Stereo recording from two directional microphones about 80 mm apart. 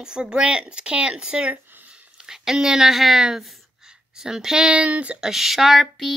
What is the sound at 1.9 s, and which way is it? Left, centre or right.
A woman's voice, centre.